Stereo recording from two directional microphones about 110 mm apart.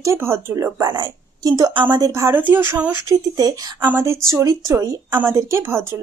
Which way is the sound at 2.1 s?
25° right (ahead or behind).